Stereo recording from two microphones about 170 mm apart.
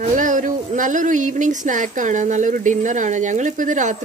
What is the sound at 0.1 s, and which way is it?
Speech, 50° right (ahead or behind).